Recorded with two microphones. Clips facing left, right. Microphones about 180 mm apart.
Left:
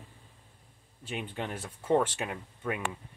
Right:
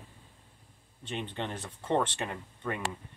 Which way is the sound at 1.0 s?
5° left (ahead or behind).